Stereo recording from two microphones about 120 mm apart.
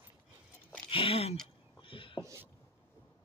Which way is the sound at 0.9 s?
50° left (ahead or behind).